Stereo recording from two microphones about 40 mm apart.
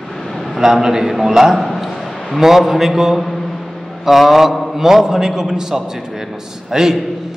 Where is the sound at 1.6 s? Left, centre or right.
Centre.